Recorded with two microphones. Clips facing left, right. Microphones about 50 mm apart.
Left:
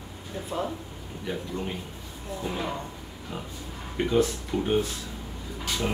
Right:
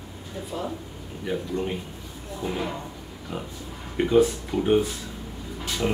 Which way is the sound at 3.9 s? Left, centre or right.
Centre.